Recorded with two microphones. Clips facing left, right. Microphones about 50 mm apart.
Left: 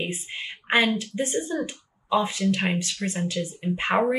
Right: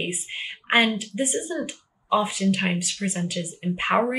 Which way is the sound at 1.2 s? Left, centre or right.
Left.